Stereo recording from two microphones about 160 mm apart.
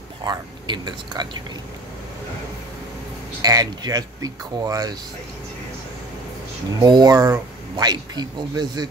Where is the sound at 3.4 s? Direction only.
25° right (ahead or behind).